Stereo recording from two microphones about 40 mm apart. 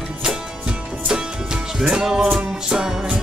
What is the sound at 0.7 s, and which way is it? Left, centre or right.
Music, right.